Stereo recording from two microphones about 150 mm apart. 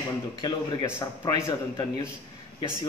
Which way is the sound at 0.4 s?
30° left (ahead or behind).